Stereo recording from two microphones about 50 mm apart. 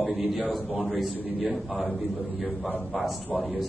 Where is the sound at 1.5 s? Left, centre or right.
Centre.